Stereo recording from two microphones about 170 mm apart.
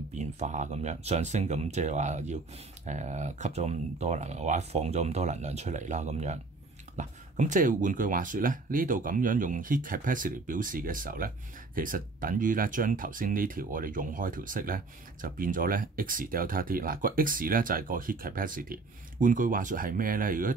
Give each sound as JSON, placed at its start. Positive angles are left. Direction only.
{"t": 0.1, "sound": "speech", "side_deg": -45}